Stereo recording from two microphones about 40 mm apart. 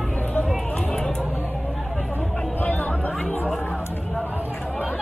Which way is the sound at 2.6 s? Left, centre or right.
Left.